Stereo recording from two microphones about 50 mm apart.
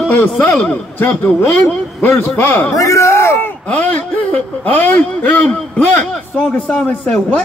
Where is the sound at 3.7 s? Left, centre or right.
Left.